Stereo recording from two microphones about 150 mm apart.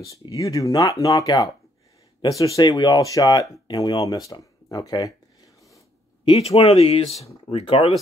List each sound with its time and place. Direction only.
0.0 s speech: 20° left (ahead or behind)
6.2 s speech: 40° left (ahead or behind)